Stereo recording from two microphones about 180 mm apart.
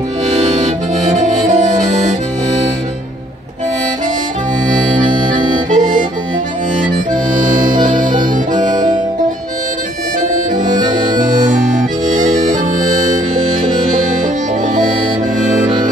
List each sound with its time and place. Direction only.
0.6 s accordion: 40° right (ahead or behind)
4.6 s music: 45° right (ahead or behind)
5.3 s harmonica: 45° right (ahead or behind)
7.8 s music: 45° right (ahead or behind)
8.6 s harmonica: 25° right (ahead or behind)
10.5 s accordion: 25° right (ahead or behind)
12.7 s music: 45° right (ahead or behind)